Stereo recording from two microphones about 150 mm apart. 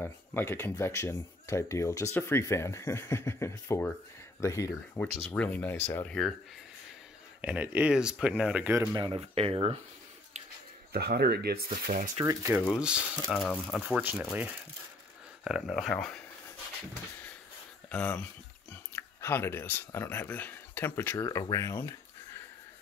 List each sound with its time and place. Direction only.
0.0 s speech: 15° left (ahead or behind)
7.4 s speech: 10° right (ahead or behind)
8.9 s speech: 25° right (ahead or behind)
9.2 s speech: 40° right (ahead or behind)
10.9 s speech: 90° right; by 12.1 s 65° right (ahead or behind)
12.5 s speech: 15° right (ahead or behind)
13.3 s speech: 5° left (ahead or behind)
17.8 s speech: 10° left (ahead or behind)